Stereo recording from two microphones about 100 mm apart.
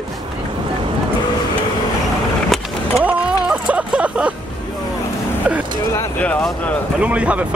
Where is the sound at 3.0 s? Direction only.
10° right (ahead or behind).